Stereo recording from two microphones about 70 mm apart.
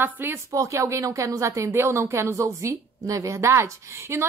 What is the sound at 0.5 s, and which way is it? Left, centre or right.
Speech, right.